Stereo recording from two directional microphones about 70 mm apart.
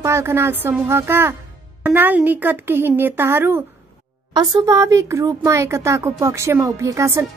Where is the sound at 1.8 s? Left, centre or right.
Right.